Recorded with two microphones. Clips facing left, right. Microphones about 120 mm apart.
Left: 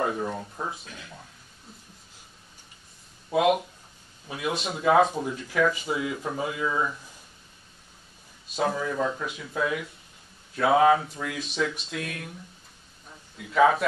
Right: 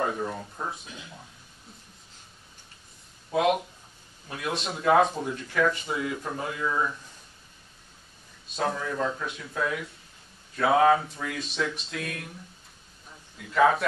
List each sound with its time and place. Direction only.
0.0 s speech: centre (ahead or behind)
0.8 s speech: 15° right (ahead or behind)
3.3 s speech: centre (ahead or behind)
8.5 s speech: 5° left (ahead or behind)
13.4 s speech: centre (ahead or behind)